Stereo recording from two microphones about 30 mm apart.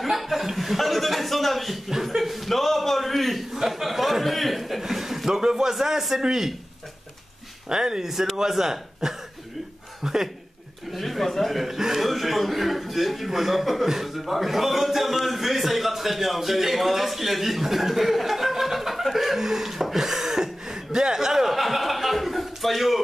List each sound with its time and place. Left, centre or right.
0.0 s chuckle: centre
0.6 s a man's voice: centre
3.5 s a man's voice: centre
5.6 s chuckle: centre
7.7 s speech: right
8.4 s chuckle: centre
10.9 s a man's voice: centre
11.6 s chuckle: centre
12.1 s a man's voice: centre
19.1 s chuckle: centre
20.3 s a sound: centre
21.5 s a man's voice: centre